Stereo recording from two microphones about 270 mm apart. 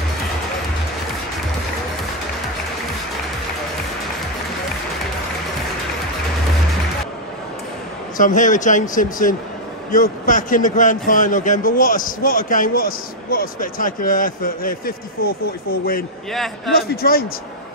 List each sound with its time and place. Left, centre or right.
8.2 s a man's voice: left